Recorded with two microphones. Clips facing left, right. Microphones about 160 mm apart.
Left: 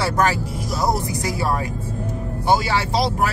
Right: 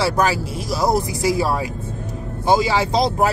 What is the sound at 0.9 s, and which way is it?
Speech, 90° right.